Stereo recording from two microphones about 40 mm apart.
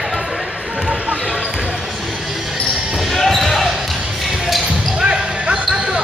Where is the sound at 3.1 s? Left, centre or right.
Centre.